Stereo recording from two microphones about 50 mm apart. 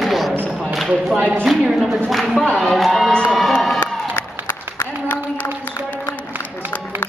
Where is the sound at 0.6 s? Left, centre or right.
Centre.